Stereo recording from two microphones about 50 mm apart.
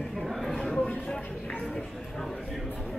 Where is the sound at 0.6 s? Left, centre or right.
Centre.